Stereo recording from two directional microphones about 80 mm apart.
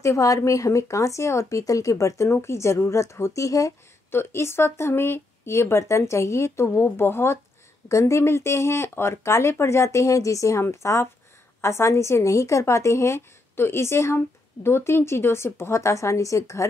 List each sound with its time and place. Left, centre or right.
0.0 s a woman's voice: left
4.1 s a woman's voice: left